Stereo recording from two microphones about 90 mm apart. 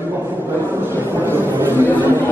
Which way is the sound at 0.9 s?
25° right (ahead or behind).